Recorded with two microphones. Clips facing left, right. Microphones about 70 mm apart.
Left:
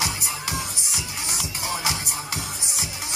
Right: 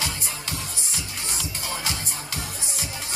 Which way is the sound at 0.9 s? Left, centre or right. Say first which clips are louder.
Even; centre.